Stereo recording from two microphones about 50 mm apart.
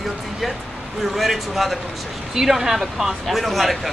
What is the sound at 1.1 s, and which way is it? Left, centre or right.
Speech, centre.